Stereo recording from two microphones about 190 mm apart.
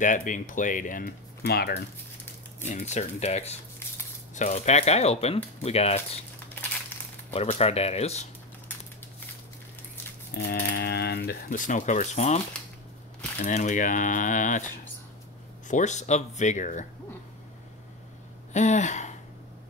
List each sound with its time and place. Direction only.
0.0 s speech: 45° left (ahead or behind)
2.6 s speech: 40° left (ahead or behind)
7.3 s speech: 30° left (ahead or behind)
10.3 s speech: 55° left (ahead or behind)
15.7 s speech: 40° left (ahead or behind)
18.5 s a sound: 40° left (ahead or behind)